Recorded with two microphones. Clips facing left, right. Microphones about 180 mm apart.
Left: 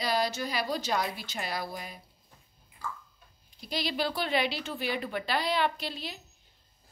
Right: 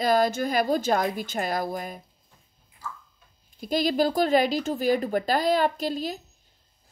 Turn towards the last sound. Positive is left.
turn(degrees=-45)  # may be behind; listen again after turning